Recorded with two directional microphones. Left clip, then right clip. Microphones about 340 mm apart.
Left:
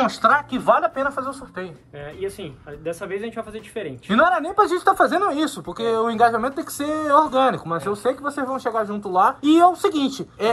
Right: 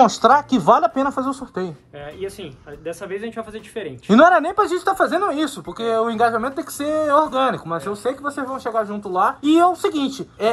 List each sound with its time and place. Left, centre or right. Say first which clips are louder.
0.0 s speech: right 4 dB; centre
2.8 s speech: even; centre